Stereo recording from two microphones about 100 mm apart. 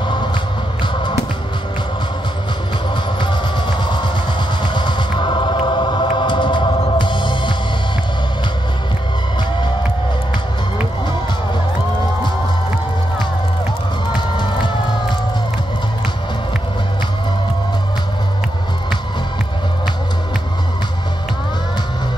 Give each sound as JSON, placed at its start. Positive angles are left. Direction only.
{"t": 4.7, "sound": "music", "side_deg": 50}